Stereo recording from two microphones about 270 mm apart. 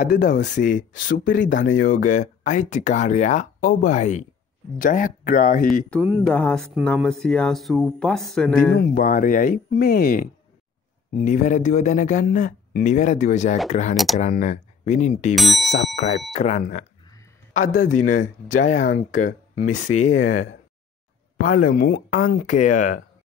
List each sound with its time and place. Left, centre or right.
0.0 s speech: left
0.9 s speech: left
1.9 s speech: left
5.9 s speech: centre
8.7 s speech: left
13.9 s speech: centre
14.2 s speech: left
15.3 s speech: centre
16.0 s speech: left
18.1 s speech: left
19.6 s speech: left
21.4 s speech: left